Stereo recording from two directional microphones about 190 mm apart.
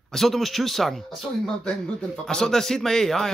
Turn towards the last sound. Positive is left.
turn(degrees=0)  # may be behind; listen again after turning